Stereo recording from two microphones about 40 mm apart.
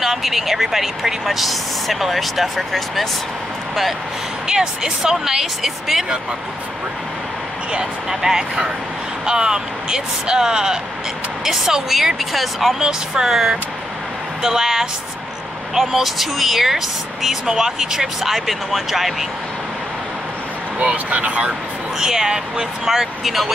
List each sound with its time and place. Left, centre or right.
0.0 s speech: centre
4.5 s speech: centre
8.1 s speech: centre
12.7 s speech: centre
20.8 s speech: right
21.9 s speech: centre